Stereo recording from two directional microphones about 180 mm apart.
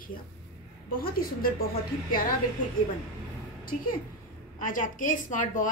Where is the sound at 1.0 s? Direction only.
55° left (ahead or behind).